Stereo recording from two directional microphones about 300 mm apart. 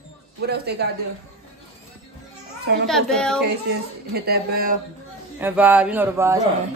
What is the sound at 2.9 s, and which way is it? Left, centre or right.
Speech, centre.